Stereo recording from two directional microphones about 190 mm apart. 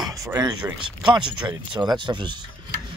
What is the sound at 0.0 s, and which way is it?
Speech, 15° right (ahead or behind).